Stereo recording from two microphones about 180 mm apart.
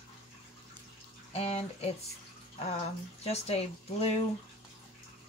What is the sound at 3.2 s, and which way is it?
Speech, 35° left (ahead or behind).